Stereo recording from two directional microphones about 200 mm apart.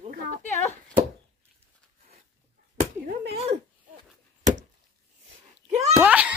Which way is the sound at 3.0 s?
45° right (ahead or behind).